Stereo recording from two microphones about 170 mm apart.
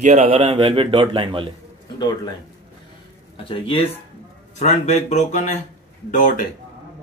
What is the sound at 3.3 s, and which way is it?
Speech, 35° left (ahead or behind).